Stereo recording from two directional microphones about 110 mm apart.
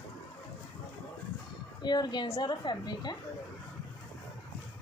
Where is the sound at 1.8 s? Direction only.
40° left (ahead or behind).